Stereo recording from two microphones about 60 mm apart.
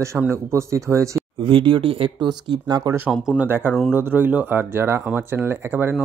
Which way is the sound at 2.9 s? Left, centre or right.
Right.